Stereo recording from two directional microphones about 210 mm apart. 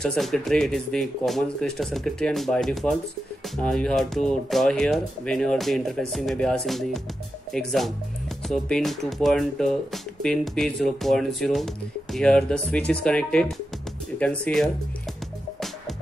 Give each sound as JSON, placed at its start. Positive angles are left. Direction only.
{"t": 0.0, "sound": "speech", "side_deg": 0}